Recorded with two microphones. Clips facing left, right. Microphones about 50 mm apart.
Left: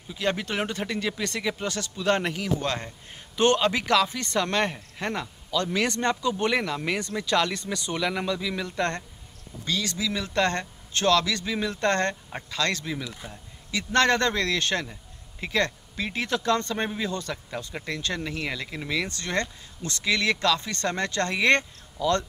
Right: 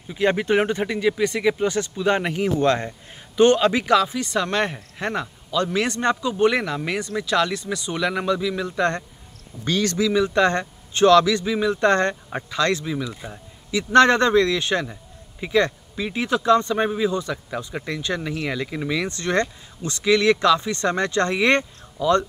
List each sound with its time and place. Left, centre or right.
0.1 s speech: right
2.4 s speech: right
6.4 s speech: centre
9.7 s speech: right
10.0 s speech: centre
11.4 s speech: centre
11.7 s speech: centre
12.8 s speech: centre
13.7 s speech: centre
19.0 s speech: right